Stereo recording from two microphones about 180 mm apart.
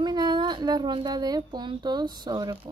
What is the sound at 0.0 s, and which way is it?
A woman's voice, 25° right (ahead or behind).